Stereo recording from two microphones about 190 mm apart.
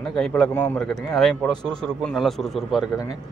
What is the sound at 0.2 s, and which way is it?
A man's voice, 5° left (ahead or behind).